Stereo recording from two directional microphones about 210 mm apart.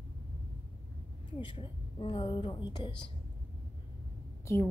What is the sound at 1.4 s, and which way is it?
A woman's voice, 25° left (ahead or behind).